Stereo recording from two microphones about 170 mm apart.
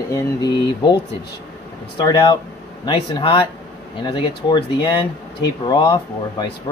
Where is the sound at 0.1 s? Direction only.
25° left (ahead or behind).